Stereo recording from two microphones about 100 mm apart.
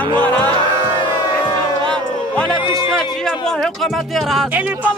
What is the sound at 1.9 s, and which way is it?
Music, 10° left (ahead or behind).